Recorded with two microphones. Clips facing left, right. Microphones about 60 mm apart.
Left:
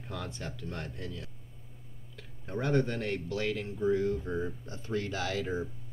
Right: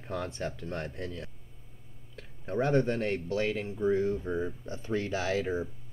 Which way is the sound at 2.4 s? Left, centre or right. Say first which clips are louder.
Right 3 dB; right.